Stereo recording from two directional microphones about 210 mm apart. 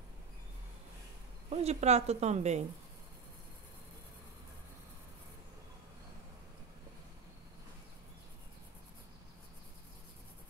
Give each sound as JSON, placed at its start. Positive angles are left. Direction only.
{"t": 1.5, "sound": "a woman's voice", "side_deg": -30}